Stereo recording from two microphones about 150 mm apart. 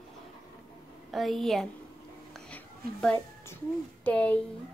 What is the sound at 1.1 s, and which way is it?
Speech, centre (ahead or behind).